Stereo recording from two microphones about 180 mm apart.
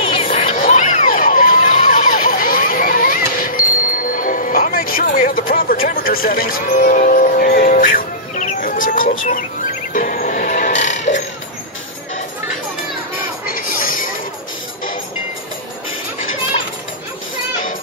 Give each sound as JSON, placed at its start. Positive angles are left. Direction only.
{"t": 0.0, "sound": "music", "side_deg": 30}
{"t": 13.5, "sound": "music", "side_deg": 50}